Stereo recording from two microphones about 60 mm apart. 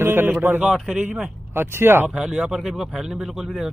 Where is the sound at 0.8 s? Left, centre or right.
Right.